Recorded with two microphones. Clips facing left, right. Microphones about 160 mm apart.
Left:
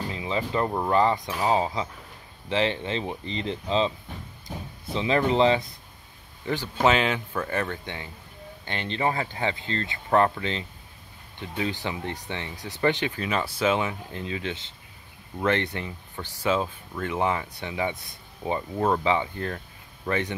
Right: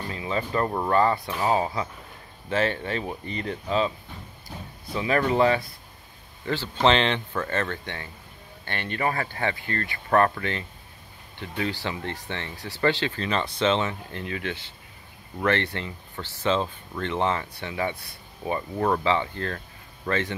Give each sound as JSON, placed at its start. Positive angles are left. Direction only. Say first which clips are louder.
{"t": 0.1, "sound": "music", "louder": "right 2 dB", "side_deg": 20}
{"t": 0.7, "sound": "speech", "louder": "even", "side_deg": 15}
{"t": 4.9, "sound": "speech", "louder": "even", "side_deg": 20}